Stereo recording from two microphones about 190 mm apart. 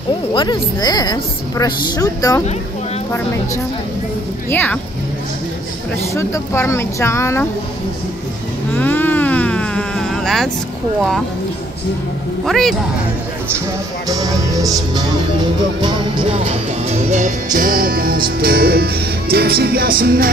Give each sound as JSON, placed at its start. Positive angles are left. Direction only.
{"t": 0.3, "sound": "a woman's voice", "side_deg": 25}
{"t": 4.5, "sound": "speech", "side_deg": 10}
{"t": 6.1, "sound": "speech", "side_deg": 15}
{"t": 8.7, "sound": "music", "side_deg": 10}
{"t": 12.4, "sound": "speech", "side_deg": 0}
{"t": 14.0, "sound": "music", "side_deg": -20}